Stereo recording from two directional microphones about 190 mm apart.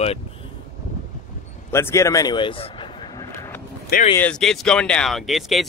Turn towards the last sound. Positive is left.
turn(degrees=0)  # may be behind; listen again after turning